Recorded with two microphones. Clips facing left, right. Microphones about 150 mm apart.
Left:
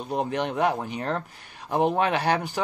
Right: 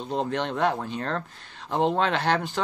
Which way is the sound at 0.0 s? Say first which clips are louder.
Left 1 dB; 15° left (ahead or behind).